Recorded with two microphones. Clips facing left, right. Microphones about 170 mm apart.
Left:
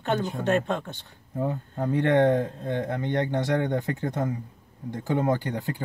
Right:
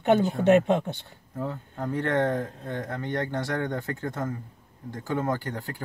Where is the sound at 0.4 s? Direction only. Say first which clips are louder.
Right 5 dB; 15° right (ahead or behind).